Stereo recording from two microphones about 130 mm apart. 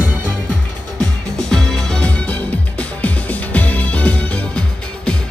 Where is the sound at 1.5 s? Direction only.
5° left (ahead or behind).